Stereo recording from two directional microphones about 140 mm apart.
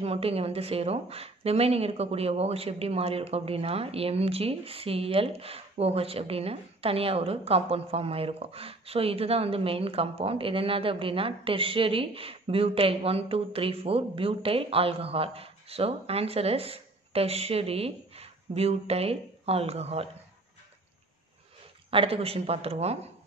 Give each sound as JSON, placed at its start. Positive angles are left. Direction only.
{"t": 0.0, "sound": "speech", "side_deg": -45}
{"t": 21.9, "sound": "speech", "side_deg": -40}